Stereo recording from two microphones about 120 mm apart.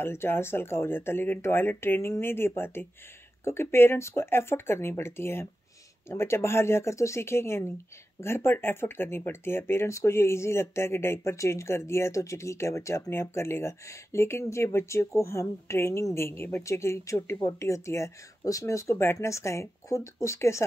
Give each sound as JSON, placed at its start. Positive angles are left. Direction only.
{"t": 0.0, "sound": "speech", "side_deg": 20}